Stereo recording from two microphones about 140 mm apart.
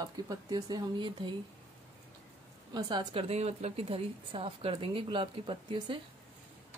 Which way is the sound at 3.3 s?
50° right (ahead or behind).